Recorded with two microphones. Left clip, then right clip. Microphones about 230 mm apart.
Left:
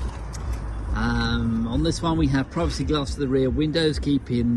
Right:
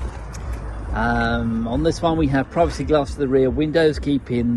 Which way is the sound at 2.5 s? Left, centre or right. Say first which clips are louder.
Right 7 dB; centre.